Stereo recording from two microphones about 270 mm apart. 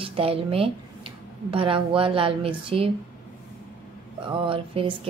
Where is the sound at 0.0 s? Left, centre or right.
Right.